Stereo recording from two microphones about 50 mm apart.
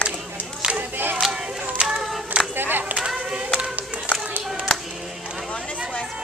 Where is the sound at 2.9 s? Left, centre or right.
Centre.